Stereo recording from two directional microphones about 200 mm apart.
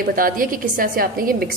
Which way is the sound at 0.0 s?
45° right (ahead or behind).